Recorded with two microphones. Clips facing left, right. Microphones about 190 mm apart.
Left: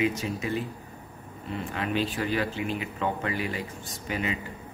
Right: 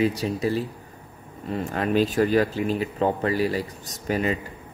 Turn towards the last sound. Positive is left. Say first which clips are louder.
# right 6 dB
turn(degrees=-40)  # may be behind; listen again after turning